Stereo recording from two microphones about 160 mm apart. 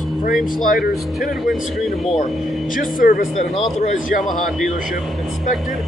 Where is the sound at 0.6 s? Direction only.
60° left (ahead or behind).